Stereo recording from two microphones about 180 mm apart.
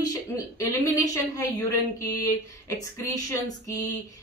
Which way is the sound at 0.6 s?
20° left (ahead or behind).